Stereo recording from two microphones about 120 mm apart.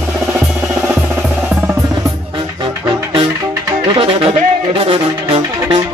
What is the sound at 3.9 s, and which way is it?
Music, 50° right (ahead or behind).